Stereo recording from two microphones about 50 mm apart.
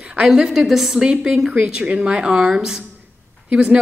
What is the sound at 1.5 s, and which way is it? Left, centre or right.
Speech, right.